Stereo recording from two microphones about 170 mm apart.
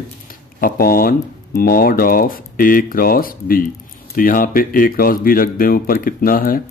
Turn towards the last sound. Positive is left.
turn(degrees=55)  # may be behind; listen again after turning